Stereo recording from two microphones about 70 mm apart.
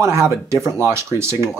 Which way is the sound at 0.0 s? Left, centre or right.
Right.